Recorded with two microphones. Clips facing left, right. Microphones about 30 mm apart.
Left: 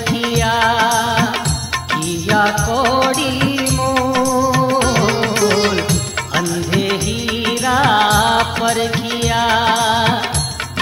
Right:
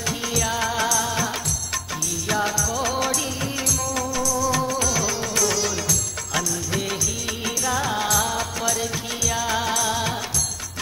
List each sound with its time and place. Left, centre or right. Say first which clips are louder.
0.3 s music: left 10 dB; left
2.2 s music of bollywood: left 9 dB; left
4.5 s music: left 8 dB; left
4.7 s music: left 9 dB; left
6.3 s music of bollywood: left 8 dB; left
7.4 s music: left 10 dB; left